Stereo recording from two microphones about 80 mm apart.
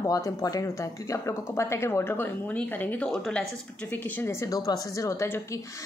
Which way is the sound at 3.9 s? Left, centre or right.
Left.